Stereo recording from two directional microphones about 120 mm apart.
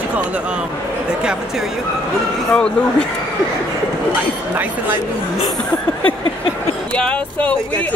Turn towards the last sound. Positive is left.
turn(degrees=10)  # may be behind; listen again after turning